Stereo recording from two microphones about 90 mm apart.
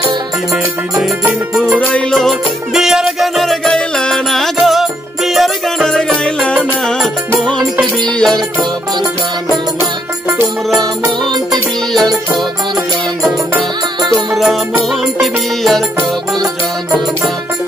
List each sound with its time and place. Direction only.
1.8 s music: 15° left (ahead or behind)
2.1 s music: centre (ahead or behind)
11.9 s music: centre (ahead or behind)
14.0 s music: 50° right (ahead or behind)
14.4 s music: 5° right (ahead or behind)